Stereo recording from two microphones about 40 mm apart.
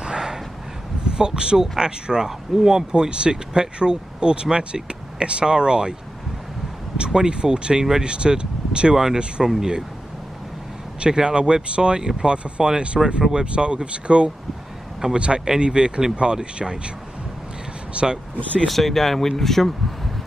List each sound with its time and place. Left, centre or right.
0.0 s a sound: centre
1.0 s speech: right
2.9 s speech: right
7.1 s speech: right
8.9 s speech: centre
11.0 s speech: right
17.9 s speech: centre
18.7 s speech: centre